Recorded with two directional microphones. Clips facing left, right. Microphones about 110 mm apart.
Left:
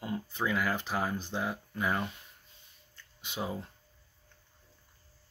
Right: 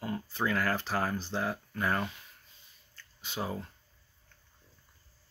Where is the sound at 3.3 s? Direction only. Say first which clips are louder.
Even; 15° left (ahead or behind).